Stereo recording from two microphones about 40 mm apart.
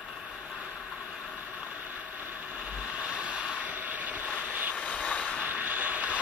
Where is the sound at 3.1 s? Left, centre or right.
Right.